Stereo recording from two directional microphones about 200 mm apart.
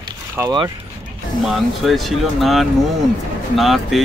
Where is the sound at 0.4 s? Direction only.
20° right (ahead or behind).